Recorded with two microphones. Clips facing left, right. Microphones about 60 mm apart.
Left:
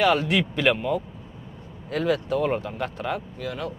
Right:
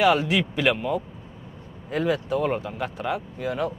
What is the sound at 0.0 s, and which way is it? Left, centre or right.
Speech, centre.